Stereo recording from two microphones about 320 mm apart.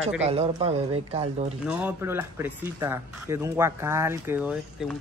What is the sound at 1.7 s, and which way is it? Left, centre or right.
Speech, centre.